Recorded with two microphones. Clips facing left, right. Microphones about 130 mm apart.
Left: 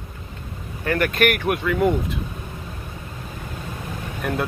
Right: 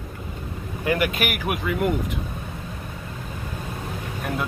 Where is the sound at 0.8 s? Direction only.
10° right (ahead or behind).